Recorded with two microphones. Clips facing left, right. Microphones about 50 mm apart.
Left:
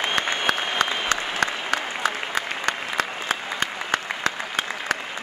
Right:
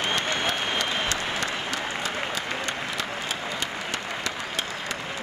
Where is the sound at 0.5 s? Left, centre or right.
Left.